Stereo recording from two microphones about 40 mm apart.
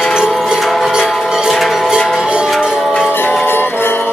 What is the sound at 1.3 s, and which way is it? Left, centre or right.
Music, centre.